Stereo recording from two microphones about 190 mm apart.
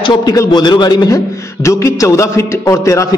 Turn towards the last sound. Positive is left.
turn(degrees=15)  # may be behind; listen again after turning